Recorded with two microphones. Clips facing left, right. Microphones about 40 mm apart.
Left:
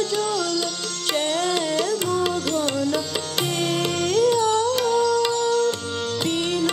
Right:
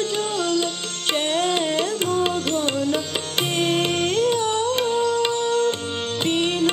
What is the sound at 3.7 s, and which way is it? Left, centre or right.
Music, right.